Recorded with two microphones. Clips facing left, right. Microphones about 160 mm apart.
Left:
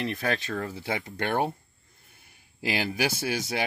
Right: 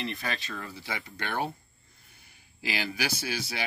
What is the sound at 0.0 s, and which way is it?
Speech, 50° left (ahead or behind).